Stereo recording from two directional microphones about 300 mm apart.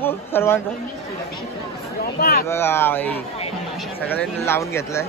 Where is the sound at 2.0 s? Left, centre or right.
Left.